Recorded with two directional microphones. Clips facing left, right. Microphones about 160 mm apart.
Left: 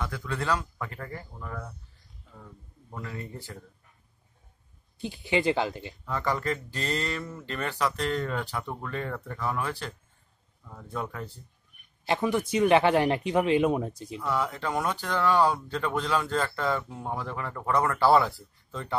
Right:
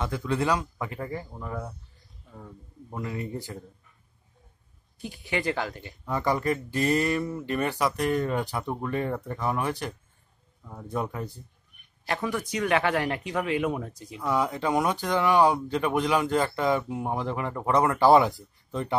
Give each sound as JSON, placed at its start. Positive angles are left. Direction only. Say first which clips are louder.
{"t": 0.0, "sound": "speech", "louder": "right 5 dB", "side_deg": -25}
{"t": 4.9, "sound": "speech", "louder": "left 3 dB", "side_deg": 25}
{"t": 6.0, "sound": "speech", "louder": "right 3 dB", "side_deg": -15}
{"t": 12.0, "sound": "speech", "louder": "left 3 dB", "side_deg": 25}
{"t": 14.1, "sound": "speech", "louder": "right 3 dB", "side_deg": -15}